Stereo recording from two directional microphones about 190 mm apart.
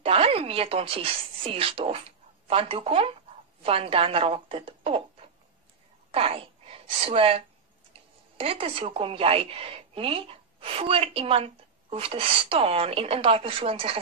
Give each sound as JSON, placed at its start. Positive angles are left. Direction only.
{"t": 0.0, "sound": "a woman's voice", "side_deg": -30}
{"t": 6.1, "sound": "a woman's voice", "side_deg": -30}